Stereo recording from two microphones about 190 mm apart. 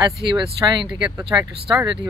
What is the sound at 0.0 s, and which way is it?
Speech, 25° right (ahead or behind).